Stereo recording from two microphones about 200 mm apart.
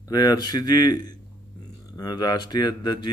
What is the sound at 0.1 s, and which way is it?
Speech, 20° left (ahead or behind).